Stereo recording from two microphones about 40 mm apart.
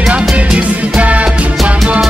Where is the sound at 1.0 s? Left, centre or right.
Right.